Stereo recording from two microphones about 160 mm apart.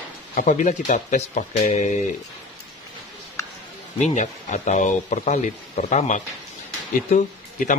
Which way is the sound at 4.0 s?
45° left (ahead or behind).